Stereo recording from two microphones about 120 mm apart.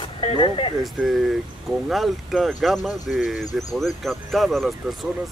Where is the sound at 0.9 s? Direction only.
Centre (ahead or behind).